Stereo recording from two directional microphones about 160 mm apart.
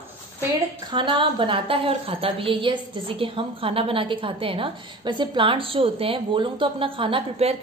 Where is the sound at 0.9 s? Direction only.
30° right (ahead or behind).